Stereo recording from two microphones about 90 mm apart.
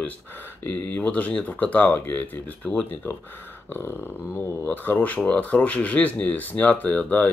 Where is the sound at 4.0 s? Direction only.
20° left (ahead or behind).